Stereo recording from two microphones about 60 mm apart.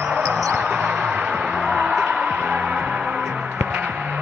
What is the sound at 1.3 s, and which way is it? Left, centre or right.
Music, centre.